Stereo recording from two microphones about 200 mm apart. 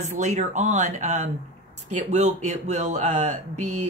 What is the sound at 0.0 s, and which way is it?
Speech, 35° right (ahead or behind).